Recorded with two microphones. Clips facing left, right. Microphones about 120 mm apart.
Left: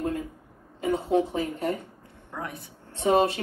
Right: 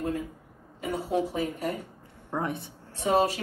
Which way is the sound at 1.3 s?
40° left (ahead or behind).